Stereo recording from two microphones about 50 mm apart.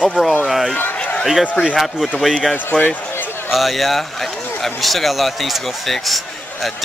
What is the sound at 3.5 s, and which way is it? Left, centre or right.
A man's voice, centre.